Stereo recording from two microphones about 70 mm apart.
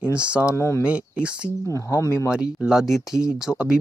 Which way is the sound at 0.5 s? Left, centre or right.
Left.